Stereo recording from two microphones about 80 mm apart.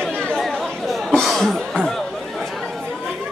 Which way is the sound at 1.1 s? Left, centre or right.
Centre.